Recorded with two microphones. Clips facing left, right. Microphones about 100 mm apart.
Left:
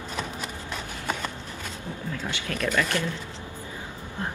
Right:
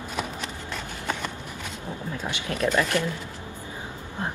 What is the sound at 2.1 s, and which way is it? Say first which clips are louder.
Speech: right 3 dB; 20° right (ahead or behind).